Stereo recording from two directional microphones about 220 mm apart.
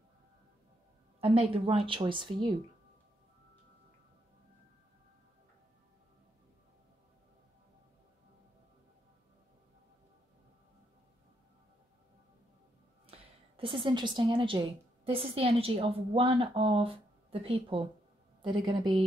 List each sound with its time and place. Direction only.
1.2 s a woman's voice: 25° right (ahead or behind)
13.6 s a woman's voice: 20° right (ahead or behind)